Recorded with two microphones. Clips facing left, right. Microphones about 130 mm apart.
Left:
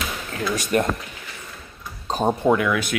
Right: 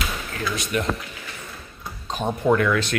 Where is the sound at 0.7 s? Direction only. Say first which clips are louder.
Left 6 dB; 45° left (ahead or behind).